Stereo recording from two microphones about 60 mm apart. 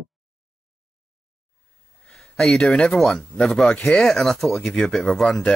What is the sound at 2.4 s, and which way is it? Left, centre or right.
Speech, centre.